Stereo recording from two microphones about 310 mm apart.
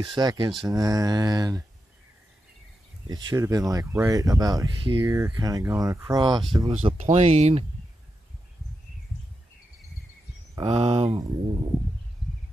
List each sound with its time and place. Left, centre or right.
0.0 s speech: centre
3.1 s speech: centre
10.5 s speech: centre